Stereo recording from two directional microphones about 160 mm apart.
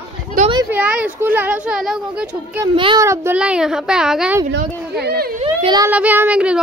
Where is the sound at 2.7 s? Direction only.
30° right (ahead or behind).